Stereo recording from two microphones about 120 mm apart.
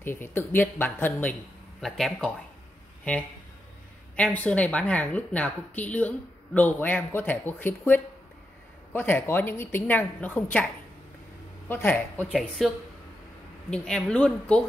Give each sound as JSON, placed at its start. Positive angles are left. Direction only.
{"t": 0.0, "sound": "speech", "side_deg": 20}
{"t": 1.8, "sound": "speech", "side_deg": 0}
{"t": 11.7, "sound": "speech", "side_deg": 15}
{"t": 12.4, "sound": "speech", "side_deg": 0}